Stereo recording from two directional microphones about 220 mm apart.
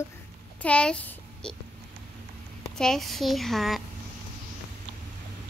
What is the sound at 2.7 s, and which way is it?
A child's voice, centre (ahead or behind).